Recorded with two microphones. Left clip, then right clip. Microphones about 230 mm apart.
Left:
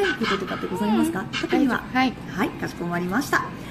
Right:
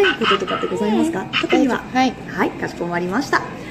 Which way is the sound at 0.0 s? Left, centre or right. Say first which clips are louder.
Right 7 dB; left.